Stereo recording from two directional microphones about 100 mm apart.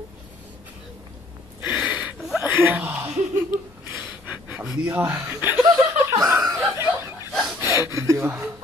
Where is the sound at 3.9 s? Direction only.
15° right (ahead or behind).